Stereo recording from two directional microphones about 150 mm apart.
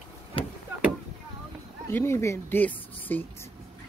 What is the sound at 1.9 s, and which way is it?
A woman's voice, 15° left (ahead or behind).